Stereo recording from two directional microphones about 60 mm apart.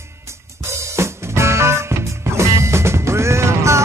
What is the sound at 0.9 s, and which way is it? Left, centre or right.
Music, right.